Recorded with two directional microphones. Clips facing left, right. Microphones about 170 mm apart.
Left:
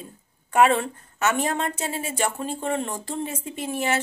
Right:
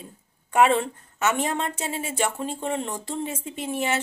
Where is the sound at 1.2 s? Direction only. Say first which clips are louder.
Left 1 dB; 20° right (ahead or behind).